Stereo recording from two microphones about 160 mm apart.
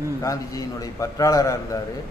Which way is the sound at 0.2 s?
20° left (ahead or behind).